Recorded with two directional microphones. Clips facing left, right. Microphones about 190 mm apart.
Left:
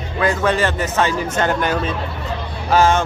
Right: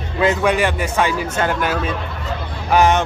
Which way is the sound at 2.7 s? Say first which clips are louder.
Even; 20° right (ahead or behind).